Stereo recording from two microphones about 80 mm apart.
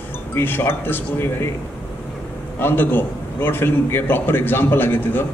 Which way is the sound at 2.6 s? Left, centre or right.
Left.